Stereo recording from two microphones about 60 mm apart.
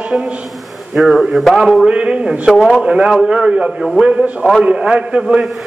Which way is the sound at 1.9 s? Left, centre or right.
Centre.